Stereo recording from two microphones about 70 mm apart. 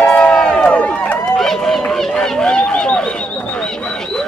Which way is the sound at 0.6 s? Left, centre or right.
Centre.